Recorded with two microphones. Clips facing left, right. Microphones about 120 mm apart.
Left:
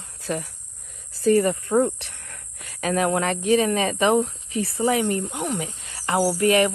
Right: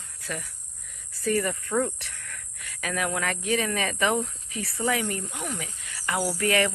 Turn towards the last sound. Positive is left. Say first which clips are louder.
# left 6 dB
turn(degrees=20)  # may be behind; listen again after turning